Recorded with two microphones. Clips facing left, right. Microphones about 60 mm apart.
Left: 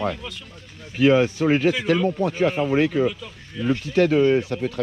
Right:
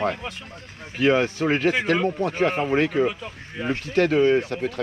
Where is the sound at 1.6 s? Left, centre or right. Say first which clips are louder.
Left 1 dB; right.